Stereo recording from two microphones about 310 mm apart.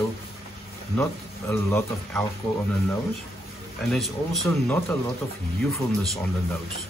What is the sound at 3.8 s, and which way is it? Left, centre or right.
Speech, centre.